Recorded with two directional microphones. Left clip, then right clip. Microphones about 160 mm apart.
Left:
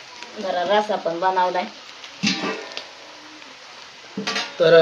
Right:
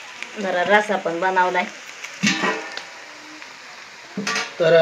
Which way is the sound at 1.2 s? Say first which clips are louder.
Right 1 dB; 45° right (ahead or behind).